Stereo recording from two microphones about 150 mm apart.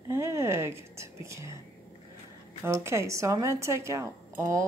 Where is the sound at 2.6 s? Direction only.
20° right (ahead or behind).